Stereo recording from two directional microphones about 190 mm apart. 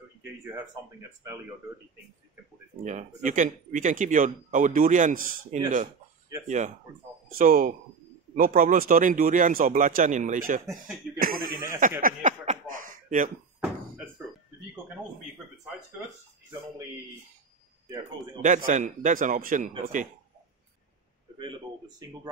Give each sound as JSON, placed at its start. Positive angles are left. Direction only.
{"t": 2.8, "sound": "speech", "side_deg": -40}
{"t": 11.1, "sound": "a sound", "side_deg": -50}
{"t": 17.8, "sound": "a man's voice", "side_deg": -20}
{"t": 18.4, "sound": "speech", "side_deg": -40}
{"t": 21.4, "sound": "speech", "side_deg": -20}